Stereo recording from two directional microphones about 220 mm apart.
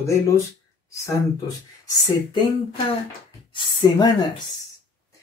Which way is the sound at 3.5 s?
20° left (ahead or behind).